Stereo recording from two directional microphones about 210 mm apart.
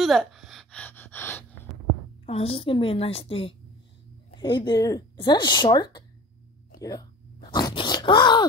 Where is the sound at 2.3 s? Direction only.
25° left (ahead or behind).